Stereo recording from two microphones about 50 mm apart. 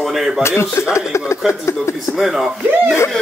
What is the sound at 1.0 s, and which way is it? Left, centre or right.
Speech, left.